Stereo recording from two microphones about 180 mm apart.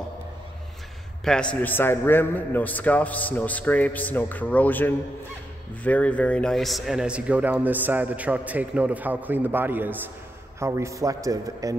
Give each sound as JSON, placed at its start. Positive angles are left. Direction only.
{"t": 1.2, "sound": "a man's voice", "side_deg": 5}